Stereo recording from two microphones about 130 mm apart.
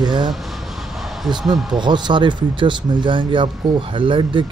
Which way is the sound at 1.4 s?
Centre (ahead or behind).